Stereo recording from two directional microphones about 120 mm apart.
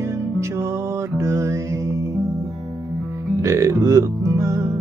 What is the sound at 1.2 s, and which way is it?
Music, 25° right (ahead or behind).